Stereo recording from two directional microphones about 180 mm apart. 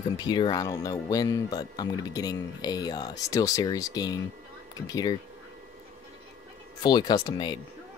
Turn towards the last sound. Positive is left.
turn(degrees=20)  # may be behind; listen again after turning